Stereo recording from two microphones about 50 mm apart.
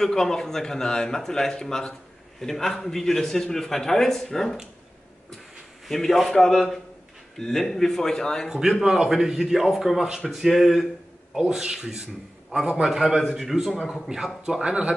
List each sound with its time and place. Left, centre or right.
0.0 s a man's voice: centre
5.9 s a man's voice: centre
8.5 s a man's voice: centre